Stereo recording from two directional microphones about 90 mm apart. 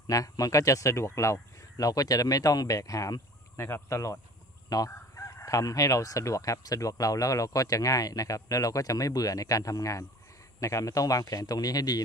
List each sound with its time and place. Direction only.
0.0 s speech: 40° left (ahead or behind)
4.9 s speech: 35° left (ahead or behind)